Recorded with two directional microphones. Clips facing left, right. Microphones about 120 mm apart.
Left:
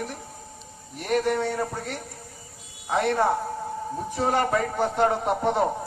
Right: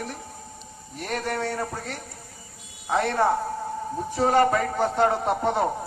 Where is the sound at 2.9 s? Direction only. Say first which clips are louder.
Even; 15° left (ahead or behind).